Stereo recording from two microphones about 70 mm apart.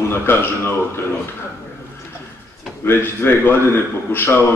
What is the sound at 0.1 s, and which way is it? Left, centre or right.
Speech, left.